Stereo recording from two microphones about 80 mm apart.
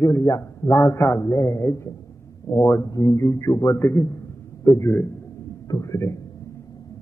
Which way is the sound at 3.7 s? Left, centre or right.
Left.